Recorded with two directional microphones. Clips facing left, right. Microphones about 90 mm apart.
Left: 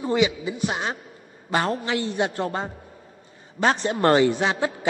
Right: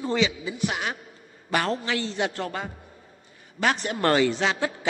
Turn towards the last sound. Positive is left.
turn(degrees=20)  # may be behind; listen again after turning